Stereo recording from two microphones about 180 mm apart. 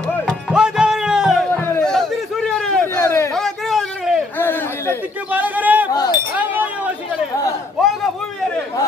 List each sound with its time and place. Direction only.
0.2 s music: centre (ahead or behind)
1.6 s a sound: 10° left (ahead or behind)
4.4 s chatter: 10° left (ahead or behind)
5.3 s a sound: 10° right (ahead or behind)
5.9 s wind chime: 20° left (ahead or behind)
6.3 s wind chime: 10° right (ahead or behind)